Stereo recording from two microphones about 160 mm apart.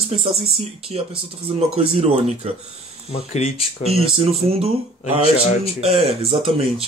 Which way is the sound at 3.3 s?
40° left (ahead or behind).